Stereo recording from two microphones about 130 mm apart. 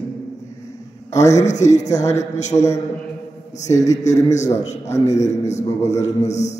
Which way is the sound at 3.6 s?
25° left (ahead or behind).